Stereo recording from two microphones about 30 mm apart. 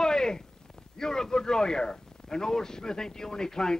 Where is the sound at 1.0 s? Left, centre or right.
Left.